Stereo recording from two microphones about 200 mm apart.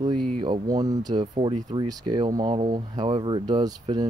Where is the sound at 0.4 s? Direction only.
20° right (ahead or behind).